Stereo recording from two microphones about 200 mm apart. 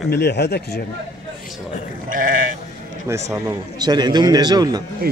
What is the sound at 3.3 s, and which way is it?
A man's voice, 20° right (ahead or behind).